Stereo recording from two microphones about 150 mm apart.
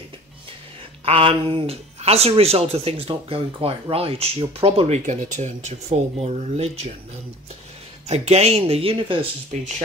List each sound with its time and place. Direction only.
1.0 s speech: 40° right (ahead or behind)
8.1 s speech: 45° right (ahead or behind)